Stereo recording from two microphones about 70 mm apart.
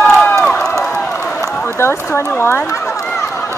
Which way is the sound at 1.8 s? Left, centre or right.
Left.